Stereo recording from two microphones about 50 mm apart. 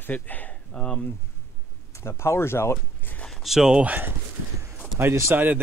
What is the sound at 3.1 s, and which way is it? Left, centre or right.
Speech, left.